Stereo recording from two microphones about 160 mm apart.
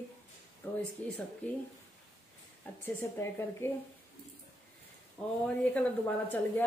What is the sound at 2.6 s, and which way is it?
A woman's voice, 15° left (ahead or behind).